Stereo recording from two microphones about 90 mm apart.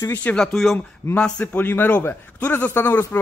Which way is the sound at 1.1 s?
10° left (ahead or behind).